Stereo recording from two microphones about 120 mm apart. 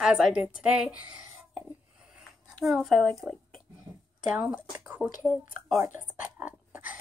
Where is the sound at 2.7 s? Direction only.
Centre (ahead or behind).